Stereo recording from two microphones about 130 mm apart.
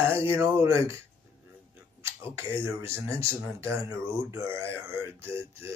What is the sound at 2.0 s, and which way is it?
Speech, 20° right (ahead or behind).